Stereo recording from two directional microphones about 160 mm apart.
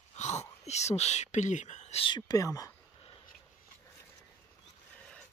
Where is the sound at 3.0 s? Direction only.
35° left (ahead or behind).